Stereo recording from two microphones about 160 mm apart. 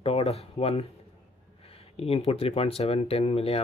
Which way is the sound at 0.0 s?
35° left (ahead or behind).